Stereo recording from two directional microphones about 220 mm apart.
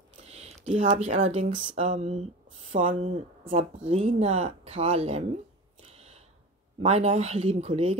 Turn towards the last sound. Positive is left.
turn(degrees=-30)  # may be behind; listen again after turning